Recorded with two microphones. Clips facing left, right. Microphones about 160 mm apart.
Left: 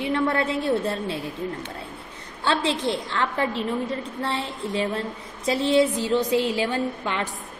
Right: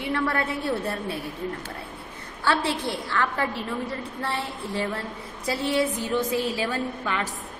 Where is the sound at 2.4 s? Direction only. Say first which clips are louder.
Left 1 dB; 20° left (ahead or behind).